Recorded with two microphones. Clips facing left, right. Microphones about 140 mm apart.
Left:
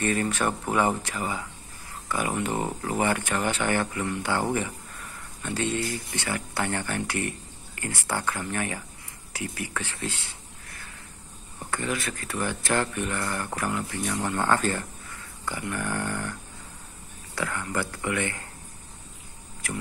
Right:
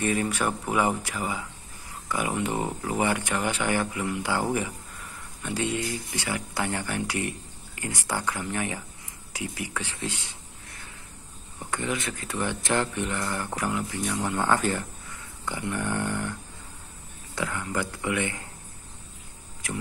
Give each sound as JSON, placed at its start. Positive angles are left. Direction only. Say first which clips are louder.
{"t": 0.0, "sound": "speech", "louder": "even", "side_deg": -15}
{"t": 17.4, "sound": "speech", "louder": "even", "side_deg": -15}